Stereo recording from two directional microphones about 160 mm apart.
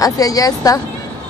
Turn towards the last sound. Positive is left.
turn(degrees=20)  # may be behind; listen again after turning